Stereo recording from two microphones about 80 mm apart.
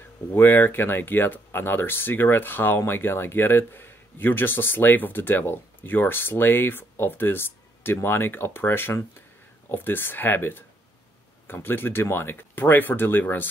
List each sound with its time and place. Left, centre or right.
0.3 s speech: left